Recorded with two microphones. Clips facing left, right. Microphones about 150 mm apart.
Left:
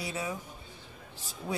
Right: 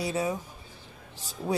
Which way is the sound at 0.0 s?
35° right (ahead or behind).